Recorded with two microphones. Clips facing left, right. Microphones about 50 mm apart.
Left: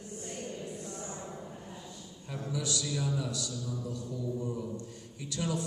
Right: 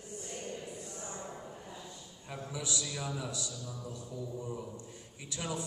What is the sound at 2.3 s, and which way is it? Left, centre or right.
A man's voice, centre.